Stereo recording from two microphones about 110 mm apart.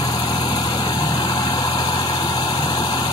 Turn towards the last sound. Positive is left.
turn(degrees=40)  # may be behind; listen again after turning